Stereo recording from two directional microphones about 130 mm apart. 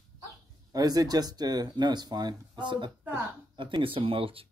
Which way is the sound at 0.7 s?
30° right (ahead or behind).